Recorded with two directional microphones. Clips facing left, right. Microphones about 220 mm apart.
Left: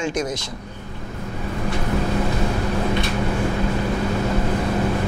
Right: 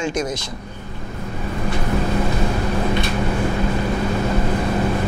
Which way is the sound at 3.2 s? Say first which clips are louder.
Right 1 dB; 25° right (ahead or behind).